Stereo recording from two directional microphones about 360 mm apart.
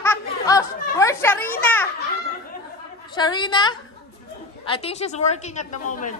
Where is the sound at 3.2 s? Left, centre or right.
Centre.